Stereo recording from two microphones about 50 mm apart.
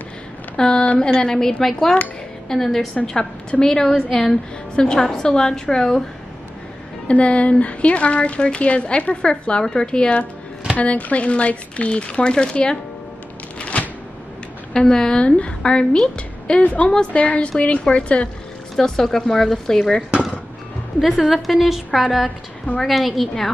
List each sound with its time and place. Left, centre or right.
0.6 s a woman's voice: centre
7.1 s speech: left
10.8 s speech: left
13.6 s a sound: left
14.7 s a woman's voice: centre
18.8 s a woman's voice: centre
21.2 s a woman's voice: centre